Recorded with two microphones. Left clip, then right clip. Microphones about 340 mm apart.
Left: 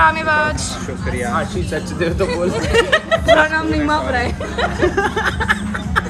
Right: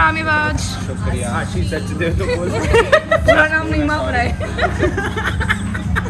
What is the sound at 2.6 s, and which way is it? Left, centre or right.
Speech, centre.